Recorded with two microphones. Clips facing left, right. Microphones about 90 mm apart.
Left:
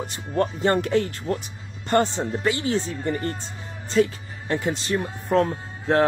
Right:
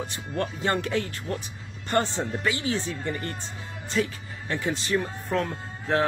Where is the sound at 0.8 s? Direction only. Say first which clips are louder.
Left 6 dB; 35° left (ahead or behind).